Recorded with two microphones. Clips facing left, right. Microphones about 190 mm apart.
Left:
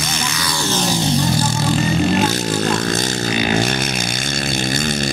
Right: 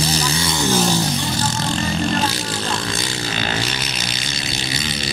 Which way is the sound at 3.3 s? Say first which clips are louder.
Left 8 dB; 15° left (ahead or behind).